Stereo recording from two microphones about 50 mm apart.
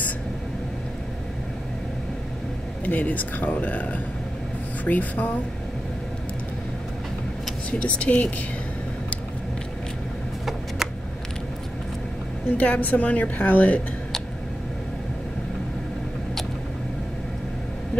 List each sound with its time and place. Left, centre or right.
2.8 s speech: left
7.7 s speech: left
12.5 s speech: left